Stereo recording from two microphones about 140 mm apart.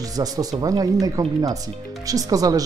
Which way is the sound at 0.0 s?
25° right (ahead or behind).